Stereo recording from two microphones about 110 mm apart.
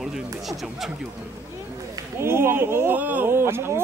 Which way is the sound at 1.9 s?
25° right (ahead or behind).